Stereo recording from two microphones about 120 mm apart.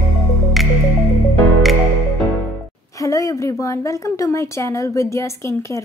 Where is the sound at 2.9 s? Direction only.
25° left (ahead or behind).